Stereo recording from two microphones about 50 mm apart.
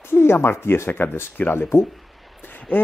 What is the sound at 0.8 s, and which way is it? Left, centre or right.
Speech, left.